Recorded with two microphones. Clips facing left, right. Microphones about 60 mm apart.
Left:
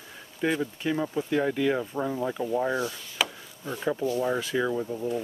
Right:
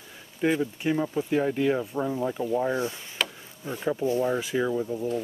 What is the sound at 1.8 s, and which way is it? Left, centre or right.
Speech, centre.